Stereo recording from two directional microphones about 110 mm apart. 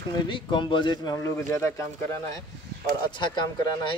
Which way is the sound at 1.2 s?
25° left (ahead or behind).